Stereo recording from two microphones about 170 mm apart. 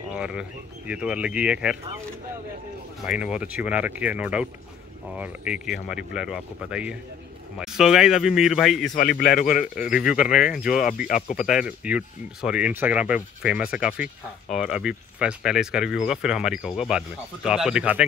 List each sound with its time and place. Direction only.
0.1 s speech: 5° right (ahead or behind)
3.1 s speech: 5° right (ahead or behind)
8.9 s a man's voice: 60° left (ahead or behind)
9.8 s speech: 5° right (ahead or behind)
10.7 s speech: 50° left (ahead or behind)
11.5 s speech: 5° right (ahead or behind)